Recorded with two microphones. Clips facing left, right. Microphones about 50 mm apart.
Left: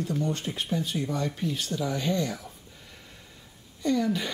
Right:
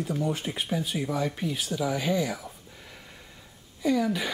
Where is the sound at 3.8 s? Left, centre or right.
Centre.